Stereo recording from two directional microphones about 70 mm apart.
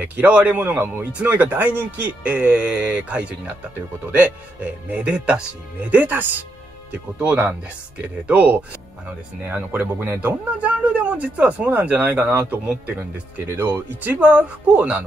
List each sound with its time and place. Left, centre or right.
0.0 s speech: right
10.6 s speech: right
13.6 s speech: right
14.2 s speech: centre